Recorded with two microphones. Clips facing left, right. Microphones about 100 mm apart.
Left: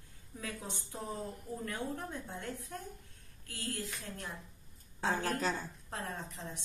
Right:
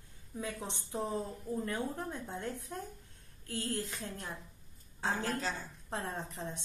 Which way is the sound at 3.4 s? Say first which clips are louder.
Right 4 dB; 15° right (ahead or behind).